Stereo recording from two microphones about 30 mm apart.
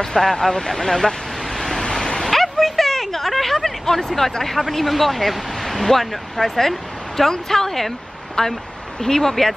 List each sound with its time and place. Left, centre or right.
0.0 s speech: centre
2.1 s a sound: centre
2.9 s speech: centre
8.4 s speech: left